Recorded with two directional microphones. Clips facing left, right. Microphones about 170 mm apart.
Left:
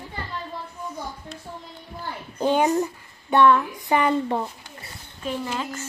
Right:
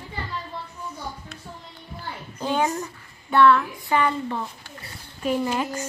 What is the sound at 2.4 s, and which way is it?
A child's voice, 20° left (ahead or behind).